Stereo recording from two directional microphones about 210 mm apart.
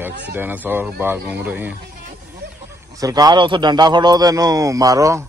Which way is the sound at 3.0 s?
20° right (ahead or behind).